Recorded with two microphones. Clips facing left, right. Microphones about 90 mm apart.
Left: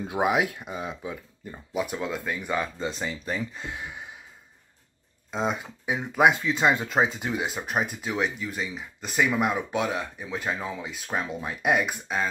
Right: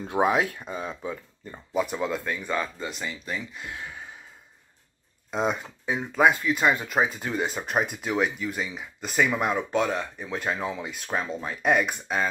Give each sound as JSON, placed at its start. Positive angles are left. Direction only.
{"t": 0.0, "sound": "speech", "side_deg": 10}
{"t": 2.9, "sound": "speech", "side_deg": 30}
{"t": 5.3, "sound": "speech", "side_deg": 0}
{"t": 5.9, "sound": "speech", "side_deg": 15}
{"t": 7.3, "sound": "speech", "side_deg": 5}